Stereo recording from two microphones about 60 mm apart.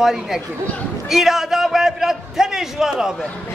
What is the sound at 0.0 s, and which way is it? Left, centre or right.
A man's voice, centre.